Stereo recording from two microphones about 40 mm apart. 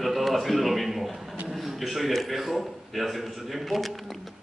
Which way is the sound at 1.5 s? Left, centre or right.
Centre.